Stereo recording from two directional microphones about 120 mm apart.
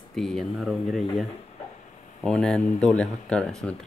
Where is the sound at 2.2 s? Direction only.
5° left (ahead or behind).